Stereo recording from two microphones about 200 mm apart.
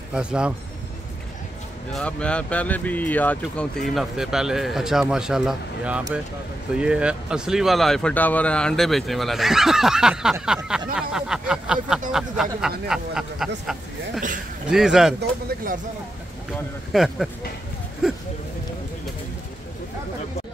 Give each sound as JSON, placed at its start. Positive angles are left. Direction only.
{"t": 0.1, "sound": "speech", "side_deg": -5}
{"t": 1.9, "sound": "speech", "side_deg": 5}
{"t": 16.9, "sound": "speech", "side_deg": 0}
{"t": 18.0, "sound": "a sound", "side_deg": 0}